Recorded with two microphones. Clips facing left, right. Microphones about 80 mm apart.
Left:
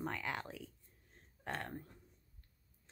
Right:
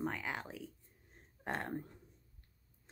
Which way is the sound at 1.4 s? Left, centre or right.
Right.